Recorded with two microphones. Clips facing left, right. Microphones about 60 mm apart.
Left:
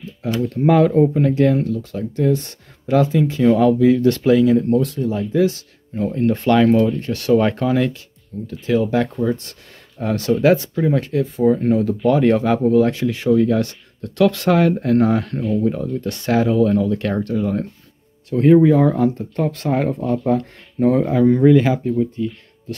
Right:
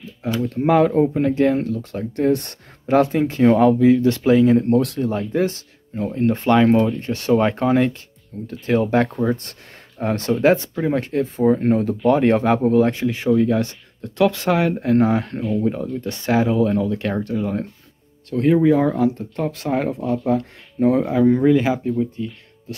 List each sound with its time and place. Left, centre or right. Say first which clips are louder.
0.7 s speech: left 2 dB; centre
1.6 s speech: left 2 dB; right
2.9 s speech: even; right
3.5 s speech: even; right
4.6 s speech: even; right
5.9 s speech: left 1 dB; centre
8.5 s speech: even; right
10.0 s speech: left 1 dB; right
10.7 s speech: left 2 dB; centre
11.0 s speech: left 1 dB; right
11.4 s speech: left 1 dB; right
18.3 s speech: left 3 dB; centre